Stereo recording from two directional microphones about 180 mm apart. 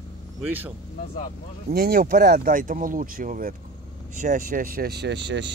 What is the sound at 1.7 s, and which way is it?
Speech, 55° right (ahead or behind).